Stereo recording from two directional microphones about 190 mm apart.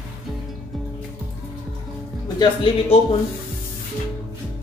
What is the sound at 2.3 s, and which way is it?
Speech, 30° left (ahead or behind).